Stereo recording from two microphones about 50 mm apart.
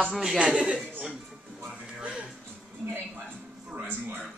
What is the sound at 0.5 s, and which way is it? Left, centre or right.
Speech, centre.